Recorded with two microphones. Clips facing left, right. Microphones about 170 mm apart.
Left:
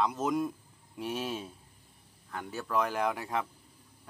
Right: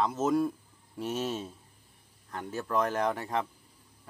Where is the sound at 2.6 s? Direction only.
Centre (ahead or behind).